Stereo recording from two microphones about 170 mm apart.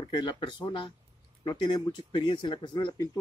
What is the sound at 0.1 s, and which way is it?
Speech, 25° left (ahead or behind).